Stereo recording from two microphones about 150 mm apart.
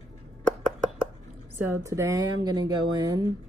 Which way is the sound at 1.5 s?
20° right (ahead or behind).